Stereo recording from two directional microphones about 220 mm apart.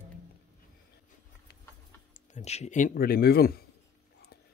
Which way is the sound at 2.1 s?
30° left (ahead or behind).